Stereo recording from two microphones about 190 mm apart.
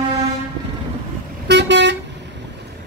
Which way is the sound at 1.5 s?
65° right (ahead or behind).